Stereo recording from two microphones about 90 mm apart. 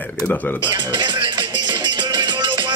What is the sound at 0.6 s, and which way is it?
Music, 60° right (ahead or behind).